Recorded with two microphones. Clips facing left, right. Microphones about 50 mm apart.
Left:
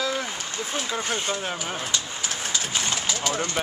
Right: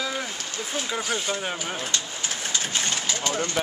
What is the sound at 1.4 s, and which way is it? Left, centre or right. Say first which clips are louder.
Speech: even; centre.